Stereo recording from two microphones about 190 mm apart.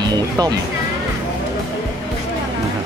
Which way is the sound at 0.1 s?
20° right (ahead or behind).